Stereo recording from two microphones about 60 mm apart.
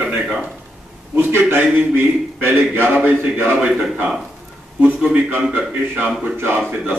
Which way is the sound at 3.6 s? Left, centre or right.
Centre.